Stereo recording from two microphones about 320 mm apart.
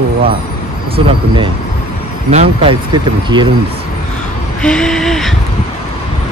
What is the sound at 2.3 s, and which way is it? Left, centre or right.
Speech, centre.